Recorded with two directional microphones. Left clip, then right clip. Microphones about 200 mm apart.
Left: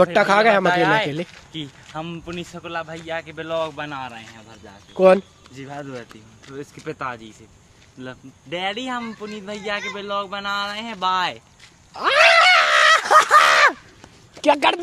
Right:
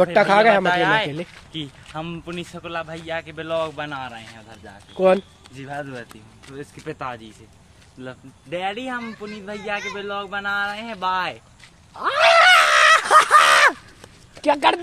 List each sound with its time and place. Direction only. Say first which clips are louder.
0.0 s speech: even; 25° left (ahead or behind)
0.7 s speech: left 1 dB; 10° left (ahead or behind)
1.5 s speech: even; centre (ahead or behind)
4.9 s speech: left 3 dB; 25° left (ahead or behind)
5.5 s speech: right 2 dB; 5° left (ahead or behind)
8.0 s speech: even; 35° left (ahead or behind); by 11.3 s 50° left (ahead or behind)
11.9 s a sound: left 2 dB; 45° left (ahead or behind)
12.5 s fowl: right 1 dB; 25° left (ahead or behind)
14.4 s speech: left 1 dB; 35° left (ahead or behind)